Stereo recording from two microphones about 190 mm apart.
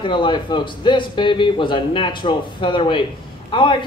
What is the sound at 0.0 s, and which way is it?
A man's voice, 25° left (ahead or behind).